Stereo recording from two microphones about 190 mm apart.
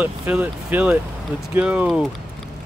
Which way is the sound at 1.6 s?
5° right (ahead or behind).